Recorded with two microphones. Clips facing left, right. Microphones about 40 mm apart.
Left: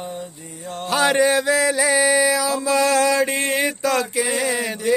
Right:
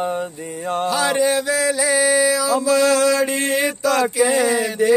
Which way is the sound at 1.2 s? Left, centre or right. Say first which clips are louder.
Left 1 dB; centre.